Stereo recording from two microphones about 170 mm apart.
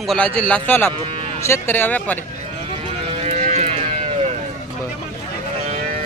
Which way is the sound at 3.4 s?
40° right (ahead or behind).